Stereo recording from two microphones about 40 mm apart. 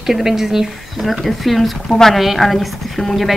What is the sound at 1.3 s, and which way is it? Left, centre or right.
Speech, centre.